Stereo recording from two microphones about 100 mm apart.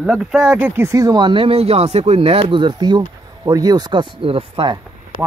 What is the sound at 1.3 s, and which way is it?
Speech, 70° right (ahead or behind).